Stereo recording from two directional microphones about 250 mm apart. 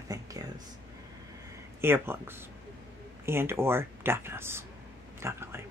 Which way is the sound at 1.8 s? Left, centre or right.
Centre.